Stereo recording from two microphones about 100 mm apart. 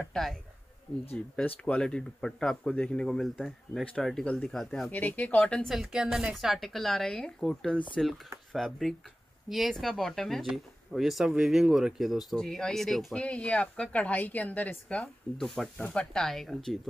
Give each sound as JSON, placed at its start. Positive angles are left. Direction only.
{"t": 0.1, "sound": "speech", "side_deg": 0}
{"t": 4.9, "sound": "speech", "side_deg": 15}
{"t": 5.7, "sound": "speech", "side_deg": -5}